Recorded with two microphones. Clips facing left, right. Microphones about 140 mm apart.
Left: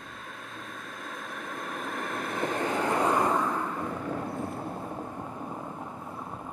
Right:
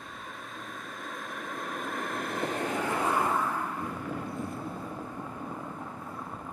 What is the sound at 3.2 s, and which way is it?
Vehicle, 15° left (ahead or behind).